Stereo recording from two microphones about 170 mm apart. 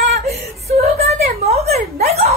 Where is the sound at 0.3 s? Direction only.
40° right (ahead or behind).